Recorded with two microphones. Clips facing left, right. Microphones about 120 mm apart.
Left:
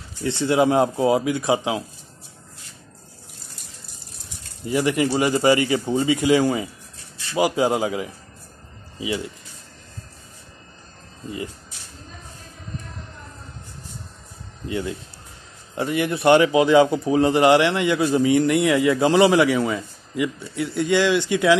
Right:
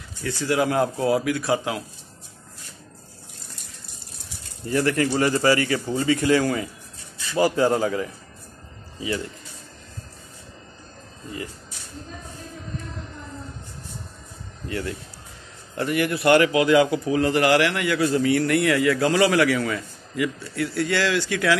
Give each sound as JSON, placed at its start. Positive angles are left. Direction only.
{"t": 0.2, "sound": "a man's voice", "side_deg": 25}
{"t": 4.6, "sound": "a man's voice", "side_deg": 15}
{"t": 14.7, "sound": "a man's voice", "side_deg": 20}